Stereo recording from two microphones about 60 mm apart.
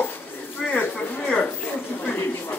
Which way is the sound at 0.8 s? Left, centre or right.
Left.